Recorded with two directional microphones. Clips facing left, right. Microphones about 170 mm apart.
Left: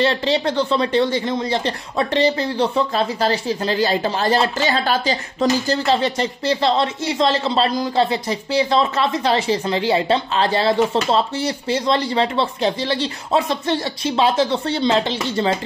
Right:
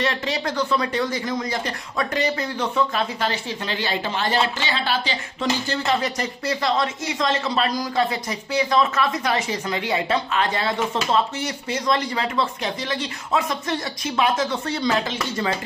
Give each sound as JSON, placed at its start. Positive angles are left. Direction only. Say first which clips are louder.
{"t": 0.0, "sound": "speech", "louder": "left 6 dB", "side_deg": 30}
{"t": 5.9, "sound": "speech", "louder": "left 2 dB", "side_deg": 30}